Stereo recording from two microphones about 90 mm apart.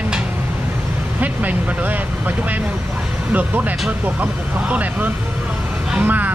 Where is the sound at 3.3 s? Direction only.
15° right (ahead or behind).